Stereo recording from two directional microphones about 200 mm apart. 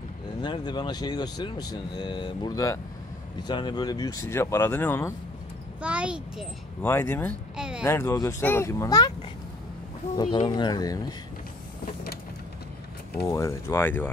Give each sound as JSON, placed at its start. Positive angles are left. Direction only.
{"t": 0.4, "sound": "speech", "side_deg": 20}
{"t": 5.8, "sound": "a child's voice", "side_deg": -5}
{"t": 6.8, "sound": "speech", "side_deg": 10}
{"t": 7.5, "sound": "a sound", "side_deg": -5}
{"t": 7.8, "sound": "speech", "side_deg": 15}
{"t": 10.1, "sound": "speech", "side_deg": 25}
{"t": 11.8, "sound": "power windows", "side_deg": 50}
{"t": 13.2, "sound": "speech", "side_deg": 15}